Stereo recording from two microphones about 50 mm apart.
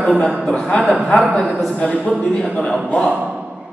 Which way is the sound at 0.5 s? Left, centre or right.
Left.